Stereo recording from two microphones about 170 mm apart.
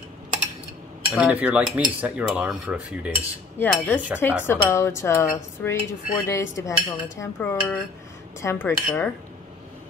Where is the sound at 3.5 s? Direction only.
10° left (ahead or behind).